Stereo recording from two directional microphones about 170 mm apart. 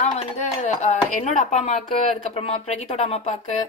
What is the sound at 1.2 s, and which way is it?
Speech, 45° left (ahead or behind).